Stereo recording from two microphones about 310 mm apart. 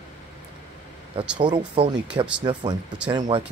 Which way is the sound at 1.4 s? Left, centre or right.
Centre.